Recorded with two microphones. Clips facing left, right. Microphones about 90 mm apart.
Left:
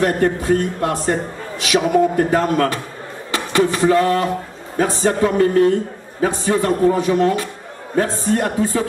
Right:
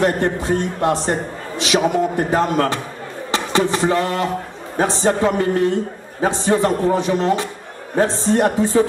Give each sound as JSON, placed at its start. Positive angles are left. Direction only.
{"t": 0.0, "sound": "a man's voice", "side_deg": -25}
{"t": 3.3, "sound": "a sound", "side_deg": -25}
{"t": 4.7, "sound": "a man's voice", "side_deg": -25}